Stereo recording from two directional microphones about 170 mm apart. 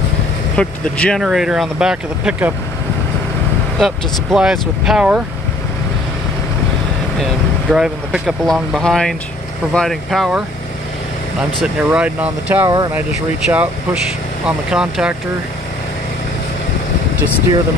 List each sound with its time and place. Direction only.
0.6 s speech: 5° left (ahead or behind)
1.2 s speech: 5° right (ahead or behind)
3.8 s speech: centre (ahead or behind)
7.7 s speech: 5° right (ahead or behind)
11.6 s speech: 5° right (ahead or behind)
12.6 s speech: 25° right (ahead or behind)
14.7 s speech: 5° right (ahead or behind)